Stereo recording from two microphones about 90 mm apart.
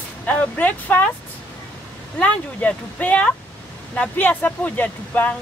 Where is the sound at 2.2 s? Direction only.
15° left (ahead or behind).